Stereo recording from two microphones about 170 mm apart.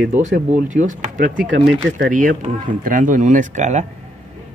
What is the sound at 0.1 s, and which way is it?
Speech, 45° right (ahead or behind).